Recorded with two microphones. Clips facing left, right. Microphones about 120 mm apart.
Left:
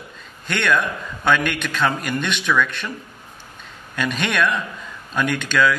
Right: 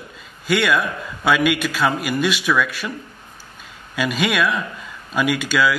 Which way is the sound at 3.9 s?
5° right (ahead or behind).